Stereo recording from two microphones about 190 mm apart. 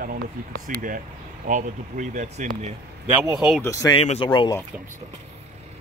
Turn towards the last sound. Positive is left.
turn(degrees=25)  # may be behind; listen again after turning